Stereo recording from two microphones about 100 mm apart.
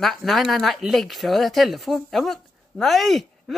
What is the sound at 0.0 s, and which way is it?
Speech, centre (ahead or behind).